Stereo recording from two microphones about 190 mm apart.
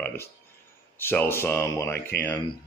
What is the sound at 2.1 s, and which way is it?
Speech, 55° left (ahead or behind).